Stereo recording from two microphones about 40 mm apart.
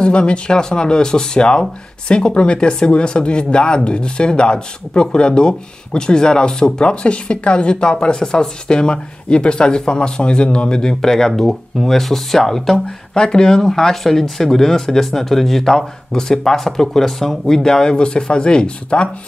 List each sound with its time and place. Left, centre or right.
0.0 s speech: left; by 12.8 s centre
12.8 s speech: centre